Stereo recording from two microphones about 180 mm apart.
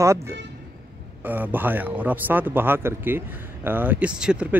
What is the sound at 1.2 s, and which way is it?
Speech, 10° right (ahead or behind).